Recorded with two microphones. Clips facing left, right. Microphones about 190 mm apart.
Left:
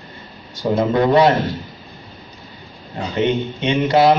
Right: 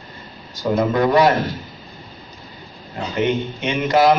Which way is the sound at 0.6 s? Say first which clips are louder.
Left 1 dB; 25° left (ahead or behind).